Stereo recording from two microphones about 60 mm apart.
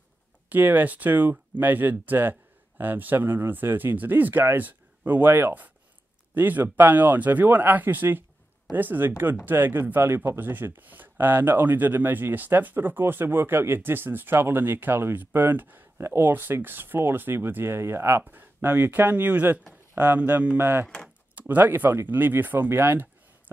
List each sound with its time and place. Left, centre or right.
0.5 s speech: right